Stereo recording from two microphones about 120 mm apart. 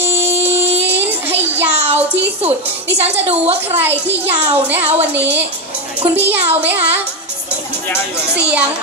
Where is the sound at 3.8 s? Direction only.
15° right (ahead or behind).